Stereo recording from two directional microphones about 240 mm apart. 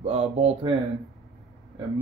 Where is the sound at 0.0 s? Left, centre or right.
Right.